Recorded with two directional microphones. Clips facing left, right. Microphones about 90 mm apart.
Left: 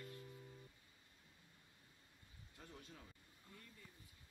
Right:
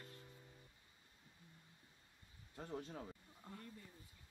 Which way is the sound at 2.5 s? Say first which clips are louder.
Right 11 dB; 40° right (ahead or behind).